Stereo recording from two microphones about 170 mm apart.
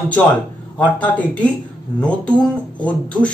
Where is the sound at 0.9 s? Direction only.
10° left (ahead or behind).